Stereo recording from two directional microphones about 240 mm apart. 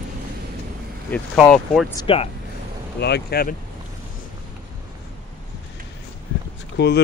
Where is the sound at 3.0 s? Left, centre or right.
Left.